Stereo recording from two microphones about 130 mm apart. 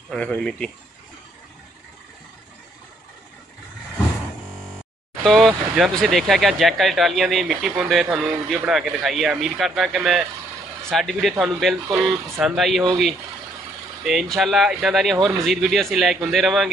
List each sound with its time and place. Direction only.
0.1 s speech: 5° left (ahead or behind)
5.2 s speech: centre (ahead or behind)
14.0 s speech: centre (ahead or behind)